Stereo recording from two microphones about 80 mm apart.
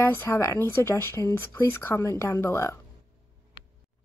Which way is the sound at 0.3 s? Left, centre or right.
Left.